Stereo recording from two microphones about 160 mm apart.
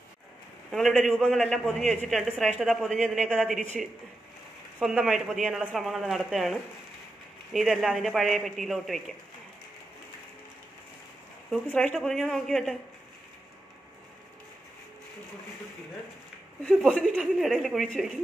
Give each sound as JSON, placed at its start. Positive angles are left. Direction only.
{"t": 0.7, "sound": "speech", "side_deg": 0}
{"t": 11.9, "sound": "speech", "side_deg": 0}
{"t": 16.6, "sound": "speech", "side_deg": -5}